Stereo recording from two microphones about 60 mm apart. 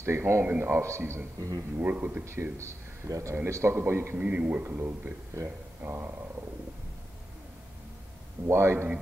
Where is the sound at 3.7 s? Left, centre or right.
Right.